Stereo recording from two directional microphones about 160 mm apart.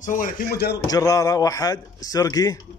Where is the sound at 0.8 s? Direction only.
20° left (ahead or behind).